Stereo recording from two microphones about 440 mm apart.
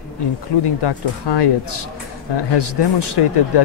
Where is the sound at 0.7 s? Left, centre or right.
Left.